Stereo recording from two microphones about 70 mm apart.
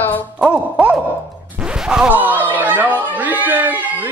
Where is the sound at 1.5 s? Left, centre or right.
Centre.